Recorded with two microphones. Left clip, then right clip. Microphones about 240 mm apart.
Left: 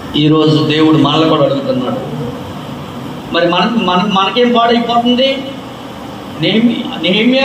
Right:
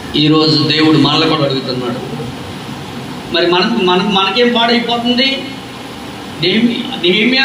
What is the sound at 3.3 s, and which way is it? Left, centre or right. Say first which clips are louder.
A man's voice: even; right.